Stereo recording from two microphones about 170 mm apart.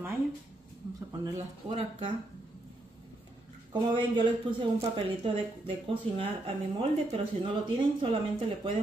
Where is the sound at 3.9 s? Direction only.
30° right (ahead or behind).